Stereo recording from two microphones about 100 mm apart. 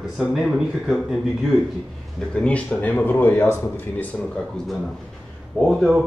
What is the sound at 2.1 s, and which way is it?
A man's voice, 10° left (ahead or behind).